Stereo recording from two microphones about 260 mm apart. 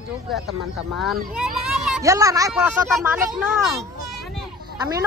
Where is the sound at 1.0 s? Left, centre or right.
Centre.